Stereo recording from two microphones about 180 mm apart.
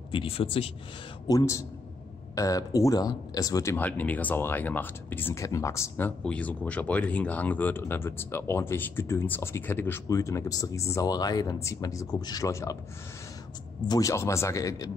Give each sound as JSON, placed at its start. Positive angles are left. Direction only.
{"t": 0.1, "sound": "speech", "side_deg": 30}
{"t": 1.2, "sound": "speech", "side_deg": 20}
{"t": 13.8, "sound": "speech", "side_deg": 20}